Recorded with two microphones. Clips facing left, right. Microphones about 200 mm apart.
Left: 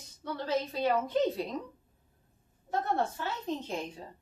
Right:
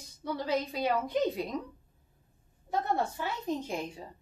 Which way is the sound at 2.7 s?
10° right (ahead or behind).